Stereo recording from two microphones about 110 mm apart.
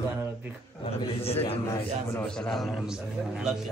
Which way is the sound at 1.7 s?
25° left (ahead or behind).